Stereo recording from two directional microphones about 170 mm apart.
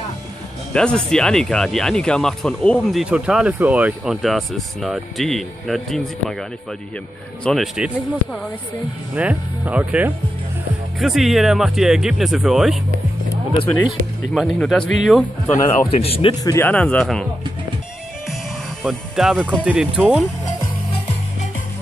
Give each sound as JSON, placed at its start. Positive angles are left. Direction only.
{"t": 0.7, "sound": "speech", "side_deg": 5}
{"t": 7.4, "sound": "speech", "side_deg": 0}
{"t": 13.8, "sound": "speech", "side_deg": 0}
{"t": 16.0, "sound": "speech", "side_deg": 35}
{"t": 16.4, "sound": "speech", "side_deg": 15}
{"t": 18.8, "sound": "speech", "side_deg": 0}